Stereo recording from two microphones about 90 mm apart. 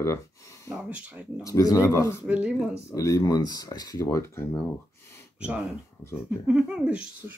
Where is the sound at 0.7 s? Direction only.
15° right (ahead or behind).